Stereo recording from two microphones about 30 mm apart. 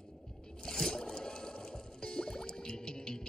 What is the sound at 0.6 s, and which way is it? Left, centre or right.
Rowboat, left.